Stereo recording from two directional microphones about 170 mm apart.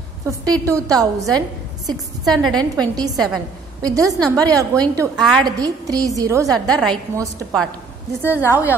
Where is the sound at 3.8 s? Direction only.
20° right (ahead or behind).